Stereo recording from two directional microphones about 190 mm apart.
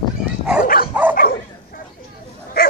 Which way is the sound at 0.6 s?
50° left (ahead or behind).